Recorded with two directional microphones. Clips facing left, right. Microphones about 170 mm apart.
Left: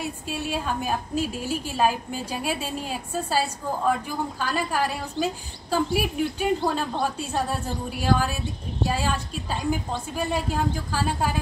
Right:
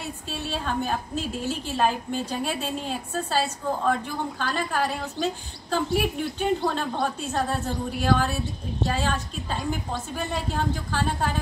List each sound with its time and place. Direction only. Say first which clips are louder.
0.3 s a woman's voice: left 1 dB; 10° left (ahead or behind)